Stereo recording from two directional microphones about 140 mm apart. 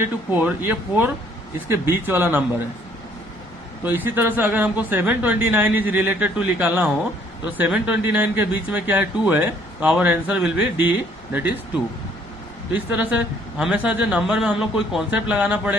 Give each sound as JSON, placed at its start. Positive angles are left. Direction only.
{"t": 0.0, "sound": "speech", "side_deg": -15}
{"t": 3.8, "sound": "speech", "side_deg": -15}